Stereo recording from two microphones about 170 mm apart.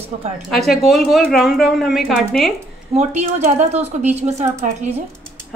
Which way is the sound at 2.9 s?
40° right (ahead or behind).